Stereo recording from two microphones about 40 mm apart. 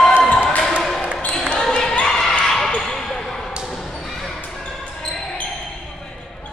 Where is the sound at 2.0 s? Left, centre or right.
Centre.